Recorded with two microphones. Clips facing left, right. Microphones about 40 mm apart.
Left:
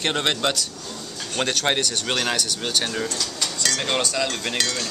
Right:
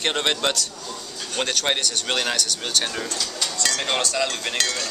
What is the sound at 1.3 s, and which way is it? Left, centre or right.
Speech, centre.